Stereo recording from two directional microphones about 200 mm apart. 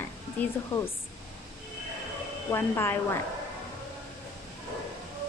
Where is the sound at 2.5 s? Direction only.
10° left (ahead or behind).